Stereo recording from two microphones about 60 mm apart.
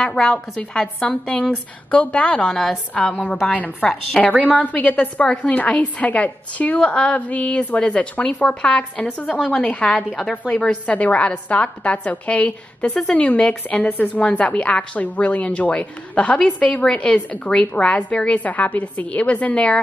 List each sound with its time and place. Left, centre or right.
0.0 s a woman's voice: centre
1.0 s a woman's voice: centre
3.5 s a woman's voice: left
4.2 s a woman's voice: centre
4.6 s a woman's voice: left